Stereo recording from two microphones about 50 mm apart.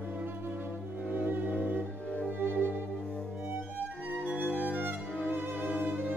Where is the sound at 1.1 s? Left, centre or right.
Right.